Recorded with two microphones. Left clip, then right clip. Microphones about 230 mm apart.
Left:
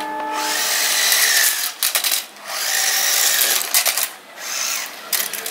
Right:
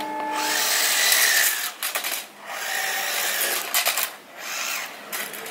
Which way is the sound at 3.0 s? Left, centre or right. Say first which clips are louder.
Left 7 dB; centre.